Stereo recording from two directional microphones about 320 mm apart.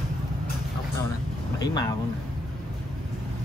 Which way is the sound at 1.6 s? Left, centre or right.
Centre.